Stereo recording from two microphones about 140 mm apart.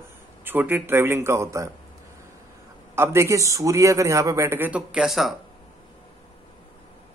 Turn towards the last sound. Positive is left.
turn(degrees=0)  # may be behind; listen again after turning